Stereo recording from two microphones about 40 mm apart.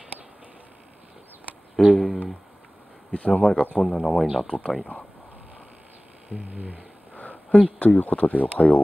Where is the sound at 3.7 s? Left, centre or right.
Left.